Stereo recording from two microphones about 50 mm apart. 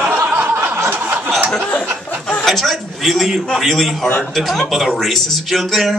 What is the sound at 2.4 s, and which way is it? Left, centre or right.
A man's voice, centre.